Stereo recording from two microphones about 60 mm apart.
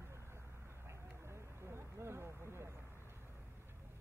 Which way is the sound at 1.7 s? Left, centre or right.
Right.